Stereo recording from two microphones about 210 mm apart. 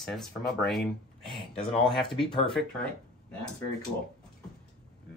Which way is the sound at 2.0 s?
25° left (ahead or behind).